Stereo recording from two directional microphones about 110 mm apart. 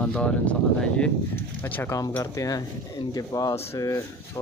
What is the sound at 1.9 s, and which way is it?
Speech, 30° left (ahead or behind).